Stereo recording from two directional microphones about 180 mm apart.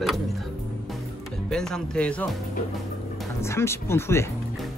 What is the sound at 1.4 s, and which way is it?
Speech, 5° left (ahead or behind).